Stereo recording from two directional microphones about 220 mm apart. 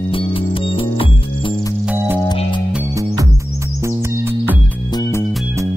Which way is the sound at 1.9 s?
10° right (ahead or behind).